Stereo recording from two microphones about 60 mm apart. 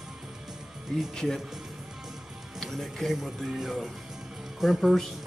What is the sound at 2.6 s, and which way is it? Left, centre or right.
Speech, centre.